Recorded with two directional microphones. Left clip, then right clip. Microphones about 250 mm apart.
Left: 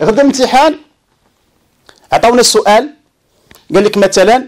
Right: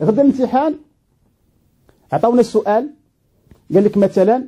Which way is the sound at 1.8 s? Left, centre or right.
Centre.